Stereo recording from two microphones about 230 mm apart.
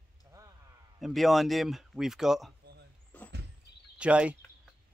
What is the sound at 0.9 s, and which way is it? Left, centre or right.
Speech, centre.